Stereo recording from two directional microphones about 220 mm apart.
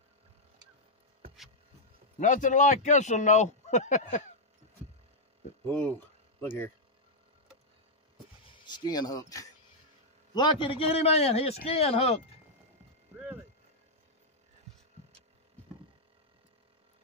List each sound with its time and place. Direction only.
2.1 s a man's voice: 35° left (ahead or behind)
5.7 s speech: 5° left (ahead or behind)
8.5 s a man's voice: 20° left (ahead or behind)